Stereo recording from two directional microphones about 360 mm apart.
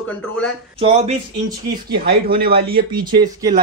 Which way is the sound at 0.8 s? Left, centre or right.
Centre.